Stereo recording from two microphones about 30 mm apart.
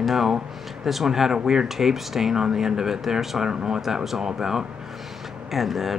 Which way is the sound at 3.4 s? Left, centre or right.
Right.